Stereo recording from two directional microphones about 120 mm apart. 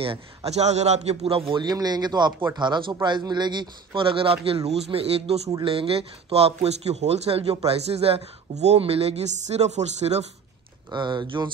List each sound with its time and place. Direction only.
0.0 s speech: 55° right (ahead or behind)
1.5 s speech: 35° right (ahead or behind); by 10.2 s 65° right (ahead or behind)
10.9 s speech: 40° right (ahead or behind)